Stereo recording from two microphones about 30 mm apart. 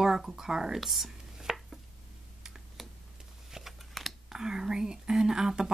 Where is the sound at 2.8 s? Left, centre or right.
Centre.